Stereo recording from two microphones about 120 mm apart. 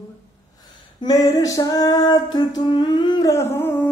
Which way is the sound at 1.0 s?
30° left (ahead or behind).